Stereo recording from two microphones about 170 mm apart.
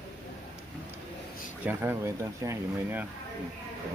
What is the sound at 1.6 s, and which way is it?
Speech, 15° right (ahead or behind).